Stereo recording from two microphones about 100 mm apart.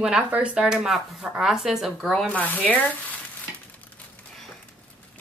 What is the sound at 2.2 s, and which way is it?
Sizzle, 15° left (ahead or behind).